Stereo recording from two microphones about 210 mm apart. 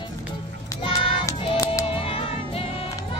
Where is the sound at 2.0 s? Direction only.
25° left (ahead or behind).